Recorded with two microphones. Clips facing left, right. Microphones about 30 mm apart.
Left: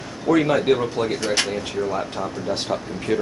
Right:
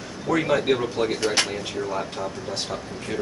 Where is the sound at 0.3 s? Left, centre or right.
Centre.